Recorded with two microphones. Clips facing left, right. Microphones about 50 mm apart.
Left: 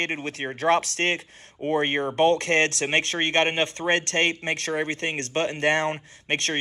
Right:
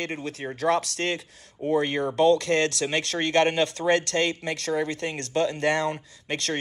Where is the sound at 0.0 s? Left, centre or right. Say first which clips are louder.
Left 3 dB; left.